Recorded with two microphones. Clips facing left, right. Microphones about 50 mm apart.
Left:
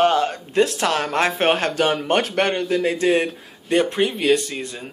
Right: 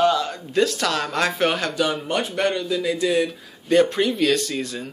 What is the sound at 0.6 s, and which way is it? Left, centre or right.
Speech, left.